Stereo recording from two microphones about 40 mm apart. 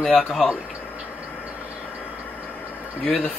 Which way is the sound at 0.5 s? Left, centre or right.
Right.